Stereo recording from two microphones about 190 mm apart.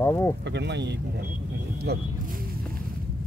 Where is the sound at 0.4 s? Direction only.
65° right (ahead or behind).